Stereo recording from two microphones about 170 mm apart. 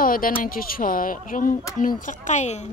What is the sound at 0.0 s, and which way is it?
Speech, 55° left (ahead or behind).